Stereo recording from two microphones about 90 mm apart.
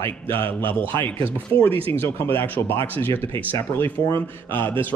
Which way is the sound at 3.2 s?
85° right.